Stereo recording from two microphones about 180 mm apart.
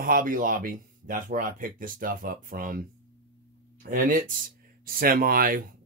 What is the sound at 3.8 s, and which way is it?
Speech, 50° right (ahead or behind).